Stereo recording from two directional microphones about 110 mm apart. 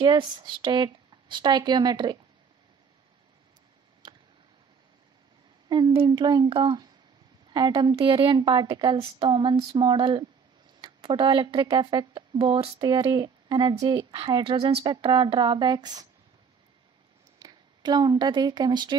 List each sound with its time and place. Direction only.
0.0 s speech: 45° right (ahead or behind)
4.0 s a sound: 40° right (ahead or behind)
5.7 s a woman's voice: 40° right (ahead or behind)
12.8 s speech: 35° right (ahead or behind)
14.4 s speech: 55° right (ahead or behind); by 16.1 s 40° right (ahead or behind)
17.4 s a woman's voice: 40° right (ahead or behind)